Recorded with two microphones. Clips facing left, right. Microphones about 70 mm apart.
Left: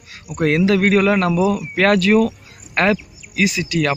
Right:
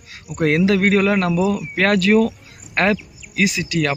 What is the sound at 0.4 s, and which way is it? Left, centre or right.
Speech, right.